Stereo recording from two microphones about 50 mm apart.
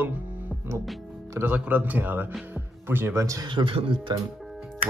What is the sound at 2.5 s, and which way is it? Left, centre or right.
Music, right.